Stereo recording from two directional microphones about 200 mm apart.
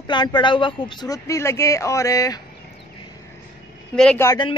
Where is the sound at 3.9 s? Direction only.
5° left (ahead or behind).